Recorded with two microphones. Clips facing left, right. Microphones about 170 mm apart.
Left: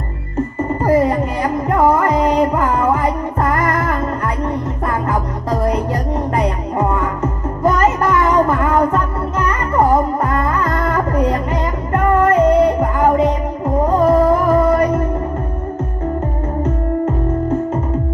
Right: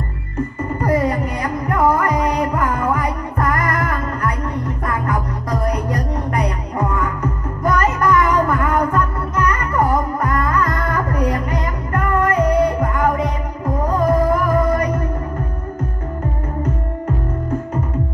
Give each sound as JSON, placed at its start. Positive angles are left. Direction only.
{"t": 0.7, "sound": "music", "side_deg": 25}